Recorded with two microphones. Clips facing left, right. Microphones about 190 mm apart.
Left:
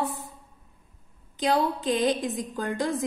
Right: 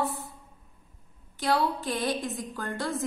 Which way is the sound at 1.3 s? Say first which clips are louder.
Left 2 dB; 20° left (ahead or behind).